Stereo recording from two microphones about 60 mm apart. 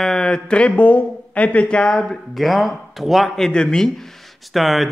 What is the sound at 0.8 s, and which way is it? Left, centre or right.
Speech, left.